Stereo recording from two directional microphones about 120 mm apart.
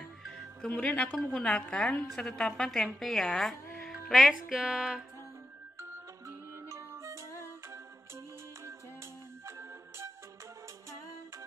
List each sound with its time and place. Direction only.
0.2 s a woman's voice: 5° left (ahead or behind)
5.8 s music: 25° right (ahead or behind)
9.5 s music: 25° right (ahead or behind)